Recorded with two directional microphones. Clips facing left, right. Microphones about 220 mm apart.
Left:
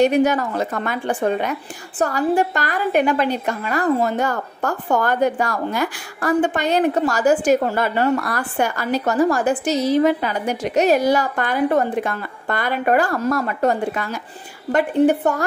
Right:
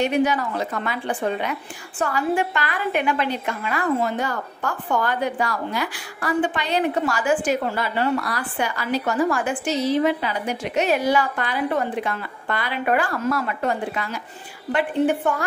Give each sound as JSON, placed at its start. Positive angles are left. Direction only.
{"t": 0.0, "sound": "a woman's voice", "side_deg": 45}